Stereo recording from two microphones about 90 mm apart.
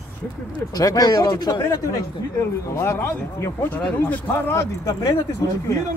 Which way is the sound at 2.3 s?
30° left (ahead or behind).